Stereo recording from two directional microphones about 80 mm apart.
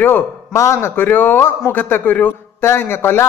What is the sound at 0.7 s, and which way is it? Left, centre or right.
A man's voice, left.